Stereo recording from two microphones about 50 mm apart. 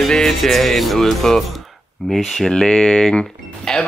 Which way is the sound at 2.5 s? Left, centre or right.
Centre.